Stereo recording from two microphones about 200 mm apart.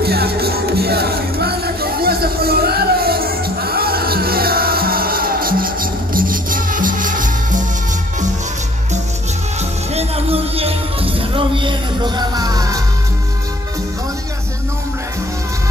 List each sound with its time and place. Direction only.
0.0 s music: 55° right (ahead or behind)
9.9 s music: 30° right (ahead or behind)